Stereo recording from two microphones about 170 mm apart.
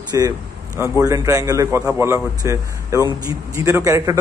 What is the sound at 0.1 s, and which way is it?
A man's voice, 20° right (ahead or behind).